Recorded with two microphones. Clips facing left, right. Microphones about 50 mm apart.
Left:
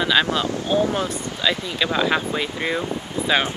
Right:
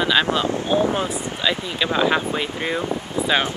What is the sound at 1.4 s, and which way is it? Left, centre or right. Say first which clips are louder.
Speech: left 1 dB; centre.